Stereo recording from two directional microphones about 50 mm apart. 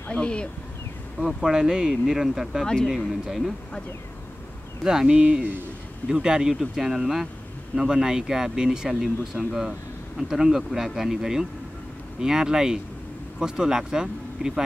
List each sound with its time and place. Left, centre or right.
0.1 s speech: left
1.2 s speech: centre
2.6 s speech: centre
3.3 s speech: centre
4.8 s speech: centre
5.1 s speech: right